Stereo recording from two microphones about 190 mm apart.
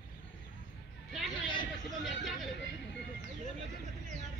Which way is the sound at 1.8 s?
Centre (ahead or behind).